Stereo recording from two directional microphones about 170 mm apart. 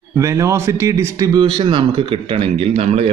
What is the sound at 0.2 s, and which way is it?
Speech, 15° right (ahead or behind).